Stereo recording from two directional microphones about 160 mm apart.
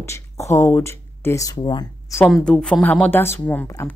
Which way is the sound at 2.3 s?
5° left (ahead or behind).